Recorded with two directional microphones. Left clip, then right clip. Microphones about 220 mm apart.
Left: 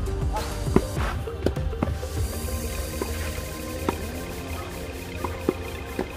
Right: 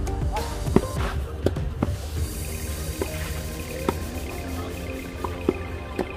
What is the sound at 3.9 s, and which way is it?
Music, 5° right (ahead or behind).